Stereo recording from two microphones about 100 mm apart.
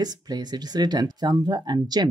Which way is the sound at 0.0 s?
40° right (ahead or behind).